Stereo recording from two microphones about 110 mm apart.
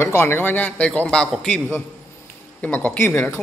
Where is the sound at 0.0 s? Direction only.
20° left (ahead or behind); by 1.6 s 5° left (ahead or behind).